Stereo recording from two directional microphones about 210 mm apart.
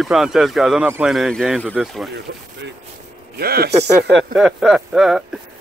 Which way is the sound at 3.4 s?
45° right (ahead or behind).